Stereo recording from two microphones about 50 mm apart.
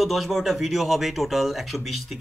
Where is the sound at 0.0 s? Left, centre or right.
Centre.